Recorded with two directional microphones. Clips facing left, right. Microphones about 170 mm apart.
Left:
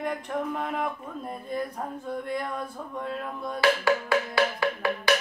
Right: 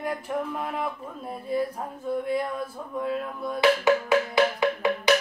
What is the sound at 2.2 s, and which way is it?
Speech, 5° right (ahead or behind).